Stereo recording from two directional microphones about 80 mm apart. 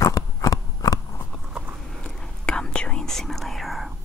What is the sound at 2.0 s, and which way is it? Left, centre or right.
Whispering, centre.